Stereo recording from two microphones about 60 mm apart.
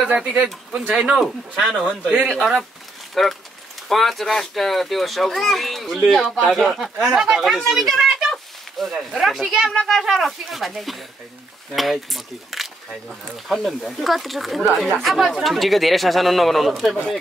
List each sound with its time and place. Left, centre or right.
0.1 s speech: centre
0.5 s speech: centre; by 2.3 s right
3.2 s speech: centre
7.2 s speech: centre
7.7 s a sound: centre
9.2 s speech: centre
16.9 s speech: centre